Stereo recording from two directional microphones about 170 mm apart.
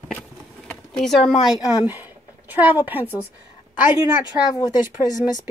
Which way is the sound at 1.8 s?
10° right (ahead or behind).